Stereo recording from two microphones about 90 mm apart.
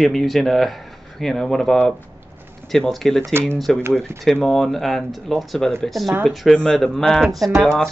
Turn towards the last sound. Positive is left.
turn(degrees=5)  # may be behind; listen again after turning